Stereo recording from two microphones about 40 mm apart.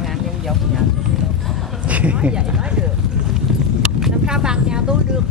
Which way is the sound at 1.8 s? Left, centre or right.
Right.